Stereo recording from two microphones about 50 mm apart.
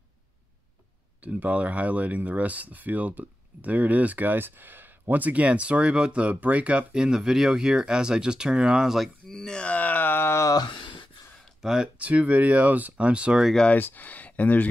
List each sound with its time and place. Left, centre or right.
1.2 s speech: right
6.9 s speech: centre
9.3 s speech: centre; by 10.3 s left
11.6 s speech: centre
12.0 s speech: right
13.7 s speech: left